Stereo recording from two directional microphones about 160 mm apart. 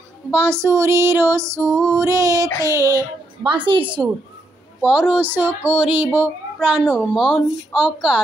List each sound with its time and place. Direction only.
0.3 s female singing: 15° right (ahead or behind)
2.6 s a child's voice: 20° right (ahead or behind)
4.8 s female singing: 5° right (ahead or behind)
6.1 s a child's voice: 10° right (ahead or behind)